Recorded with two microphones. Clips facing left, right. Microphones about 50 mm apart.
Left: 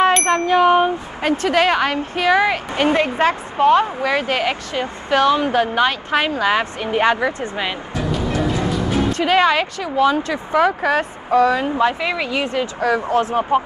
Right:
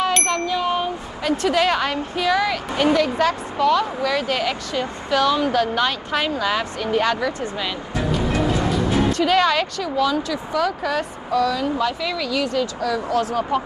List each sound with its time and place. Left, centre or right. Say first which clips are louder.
0.5 s speech: left 8 dB; left
9.1 s speech: left 4 dB; left